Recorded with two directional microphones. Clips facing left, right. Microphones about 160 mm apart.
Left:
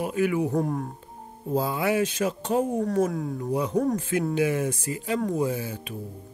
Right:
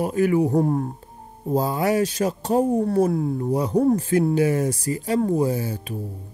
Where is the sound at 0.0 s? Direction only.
40° right (ahead or behind).